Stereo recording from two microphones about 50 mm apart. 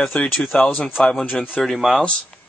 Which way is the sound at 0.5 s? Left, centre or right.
Left.